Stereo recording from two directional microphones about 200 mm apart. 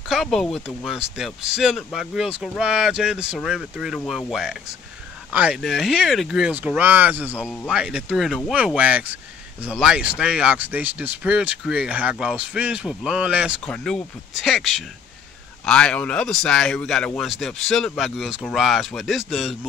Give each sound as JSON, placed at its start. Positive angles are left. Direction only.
{"t": 0.1, "sound": "speech", "side_deg": 0}
{"t": 7.3, "sound": "speech", "side_deg": 10}
{"t": 7.6, "sound": "speech", "side_deg": -5}